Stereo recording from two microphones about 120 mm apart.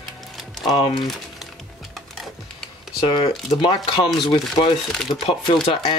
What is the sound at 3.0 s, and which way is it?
Speech, 45° left (ahead or behind).